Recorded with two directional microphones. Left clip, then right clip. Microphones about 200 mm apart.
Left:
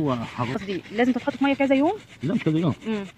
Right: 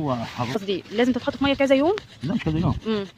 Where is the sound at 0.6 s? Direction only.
10° right (ahead or behind).